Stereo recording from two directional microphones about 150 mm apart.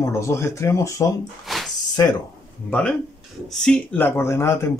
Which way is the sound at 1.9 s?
25° left (ahead or behind).